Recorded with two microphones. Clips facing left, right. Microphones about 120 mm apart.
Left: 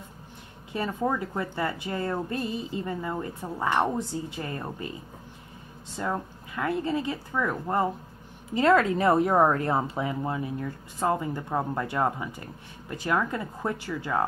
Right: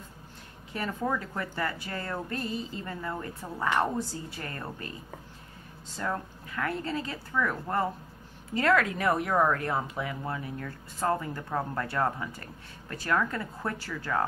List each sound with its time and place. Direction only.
0.7 s speech: 15° left (ahead or behind)
5.9 s speech: 20° left (ahead or behind)